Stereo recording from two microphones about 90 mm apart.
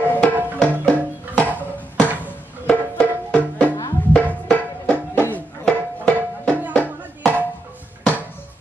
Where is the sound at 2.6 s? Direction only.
15° left (ahead or behind).